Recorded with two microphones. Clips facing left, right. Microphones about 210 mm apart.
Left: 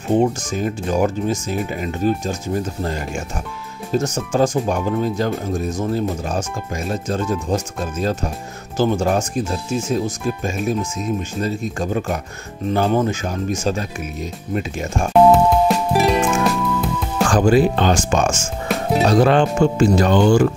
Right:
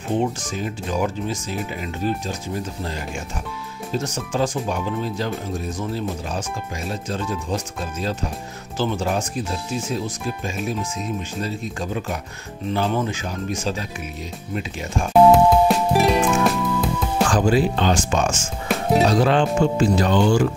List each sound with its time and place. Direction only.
0.2 s speech: 45° left (ahead or behind)
15.7 s music: centre (ahead or behind)
17.3 s speech: 50° left (ahead or behind)
18.7 s music: centre (ahead or behind)
19.0 s speech: 55° left (ahead or behind)